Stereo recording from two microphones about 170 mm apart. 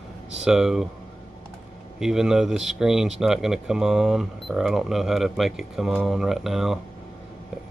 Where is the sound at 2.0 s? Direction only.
5° right (ahead or behind).